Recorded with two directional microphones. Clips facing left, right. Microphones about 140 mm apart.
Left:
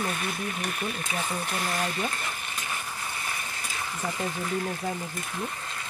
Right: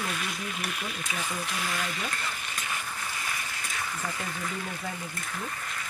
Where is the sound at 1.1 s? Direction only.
30° left (ahead or behind).